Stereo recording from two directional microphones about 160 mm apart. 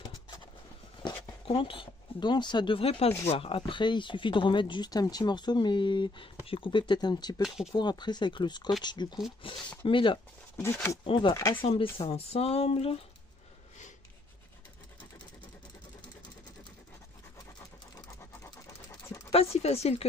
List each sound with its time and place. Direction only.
1.0 s speech: 35° left (ahead or behind)
7.4 s speech: 5° right (ahead or behind)
7.7 s speech: 25° left (ahead or behind)
10.6 s speech: 15° left (ahead or behind)
11.1 s speech: 30° left (ahead or behind)
11.6 s speech: 35° left (ahead or behind)
17.9 s a sound: 25° left (ahead or behind)
19.3 s speech: 40° left (ahead or behind)